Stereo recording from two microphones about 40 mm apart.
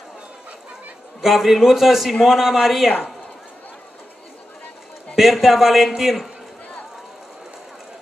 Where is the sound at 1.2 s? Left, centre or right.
Centre.